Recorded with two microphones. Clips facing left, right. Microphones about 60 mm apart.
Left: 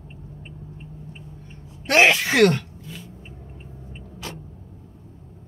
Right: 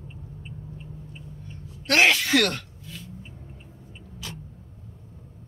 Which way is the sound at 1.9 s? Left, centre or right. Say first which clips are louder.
Left 3 dB; left.